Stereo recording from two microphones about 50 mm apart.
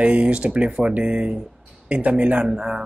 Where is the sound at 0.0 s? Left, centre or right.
Right.